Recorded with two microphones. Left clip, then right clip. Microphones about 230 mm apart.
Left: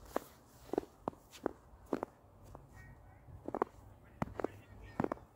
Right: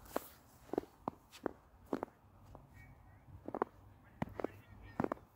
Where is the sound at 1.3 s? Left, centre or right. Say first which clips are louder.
Left 2 dB; centre.